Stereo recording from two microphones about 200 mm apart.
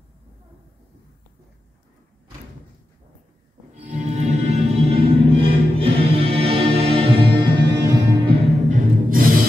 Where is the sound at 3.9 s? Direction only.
35° right (ahead or behind); by 8.3 s 20° right (ahead or behind).